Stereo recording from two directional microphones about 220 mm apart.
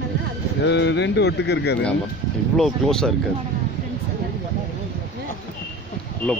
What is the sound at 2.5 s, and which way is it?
Speech, centre (ahead or behind).